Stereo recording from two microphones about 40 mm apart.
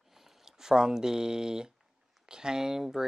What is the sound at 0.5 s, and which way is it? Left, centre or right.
Speech, centre.